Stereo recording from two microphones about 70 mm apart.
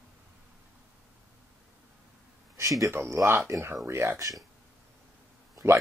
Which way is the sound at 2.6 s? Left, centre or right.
Right.